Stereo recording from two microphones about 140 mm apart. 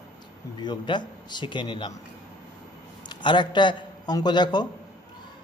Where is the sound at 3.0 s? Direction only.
30° left (ahead or behind).